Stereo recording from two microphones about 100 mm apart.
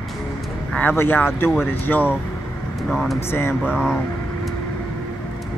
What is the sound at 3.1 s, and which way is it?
Speech, 25° left (ahead or behind).